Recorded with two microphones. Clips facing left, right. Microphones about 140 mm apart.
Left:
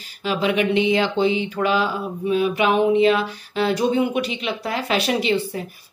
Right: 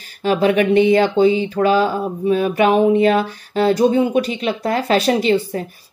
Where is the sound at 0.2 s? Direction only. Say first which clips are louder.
Right 5 dB; 45° right (ahead or behind).